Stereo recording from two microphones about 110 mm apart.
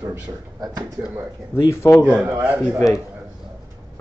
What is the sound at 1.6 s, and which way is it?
Speech, 25° left (ahead or behind).